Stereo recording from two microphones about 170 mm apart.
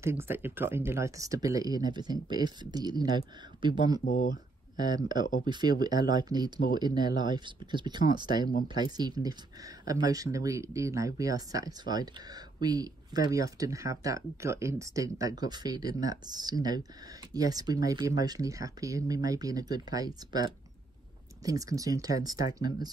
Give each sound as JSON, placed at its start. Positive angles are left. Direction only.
{"t": 0.0, "sound": "speech", "side_deg": -15}
{"t": 4.0, "sound": "speech", "side_deg": 50}
{"t": 4.7, "sound": "speech", "side_deg": -25}